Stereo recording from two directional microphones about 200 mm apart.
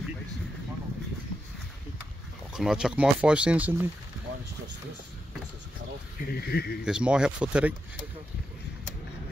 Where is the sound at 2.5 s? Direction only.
5° right (ahead or behind).